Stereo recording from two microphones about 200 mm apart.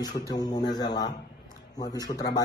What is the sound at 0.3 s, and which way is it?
Speech, 20° left (ahead or behind).